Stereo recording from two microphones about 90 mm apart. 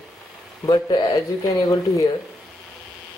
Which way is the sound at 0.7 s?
55° left (ahead or behind).